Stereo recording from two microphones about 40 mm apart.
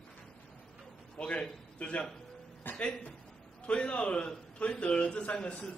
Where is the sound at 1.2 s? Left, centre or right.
Left.